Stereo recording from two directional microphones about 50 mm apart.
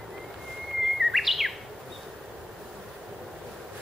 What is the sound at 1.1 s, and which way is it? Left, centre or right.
Chirp, centre.